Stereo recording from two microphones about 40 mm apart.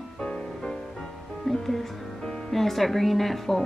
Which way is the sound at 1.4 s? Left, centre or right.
Centre.